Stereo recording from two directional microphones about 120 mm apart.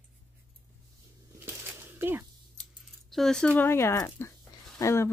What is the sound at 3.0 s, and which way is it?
Speech, centre (ahead or behind).